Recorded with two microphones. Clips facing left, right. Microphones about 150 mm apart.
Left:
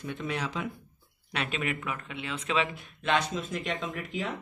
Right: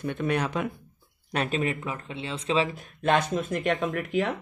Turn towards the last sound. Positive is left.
turn(degrees=-60)  # may be behind; listen again after turning